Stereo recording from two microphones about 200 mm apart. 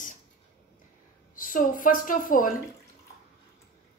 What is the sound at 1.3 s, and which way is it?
A woman's voice, 40° left (ahead or behind).